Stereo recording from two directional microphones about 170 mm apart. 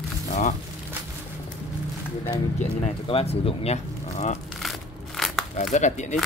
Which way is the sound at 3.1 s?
35° left (ahead or behind).